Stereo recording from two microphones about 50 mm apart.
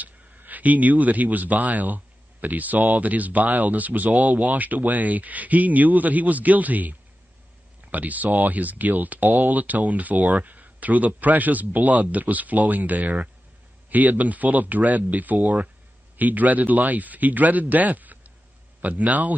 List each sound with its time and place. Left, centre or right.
0.0 s speech: right